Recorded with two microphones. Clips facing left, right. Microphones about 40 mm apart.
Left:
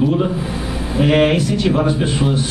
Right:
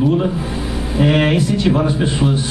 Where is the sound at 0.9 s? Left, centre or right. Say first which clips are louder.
Left 1 dB; centre.